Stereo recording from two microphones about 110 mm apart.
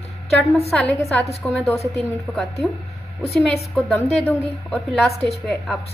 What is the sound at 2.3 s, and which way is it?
Speech, 15° left (ahead or behind).